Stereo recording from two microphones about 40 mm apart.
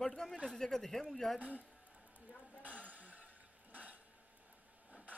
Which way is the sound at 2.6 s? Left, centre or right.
Right.